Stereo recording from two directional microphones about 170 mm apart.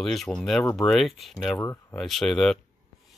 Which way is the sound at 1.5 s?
15° left (ahead or behind).